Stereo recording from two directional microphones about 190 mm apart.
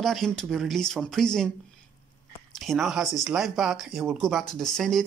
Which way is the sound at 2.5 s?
Centre (ahead or behind).